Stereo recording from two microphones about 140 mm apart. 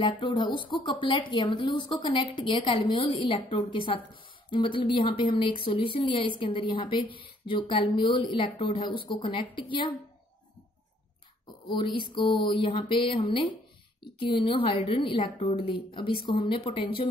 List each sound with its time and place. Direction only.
0.0 s a woman's voice: 35° left (ahead or behind)
11.6 s a sound: 35° left (ahead or behind)
12.1 s a woman's voice: 35° left (ahead or behind)